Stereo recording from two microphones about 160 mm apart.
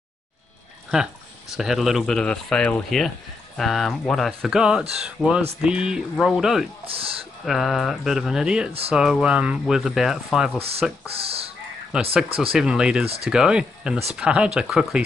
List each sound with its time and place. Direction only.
1.5 s speech: centre (ahead or behind)
6.9 s speech: 35° right (ahead or behind)
7.4 s speech: centre (ahead or behind)
11.2 s speech: 40° right (ahead or behind)
11.9 s speech: 5° right (ahead or behind)